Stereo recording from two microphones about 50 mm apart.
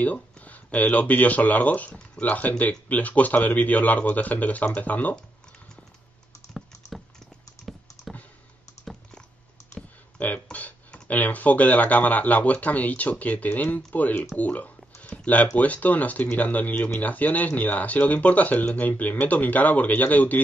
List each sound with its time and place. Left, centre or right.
0.0 s speech: left
10.1 s speech: left
14.3 s a sound: left
15.5 s speech: left